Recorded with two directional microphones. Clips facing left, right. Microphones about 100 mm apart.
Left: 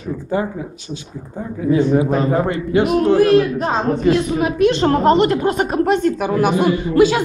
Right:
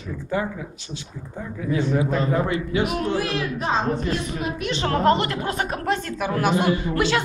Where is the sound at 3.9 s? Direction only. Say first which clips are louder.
Left 10 dB; 75° left (ahead or behind).